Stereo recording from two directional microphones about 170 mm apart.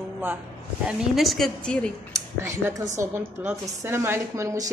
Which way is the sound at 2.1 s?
15° right (ahead or behind).